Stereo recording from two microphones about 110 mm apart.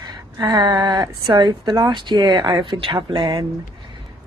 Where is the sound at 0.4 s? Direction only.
40° right (ahead or behind).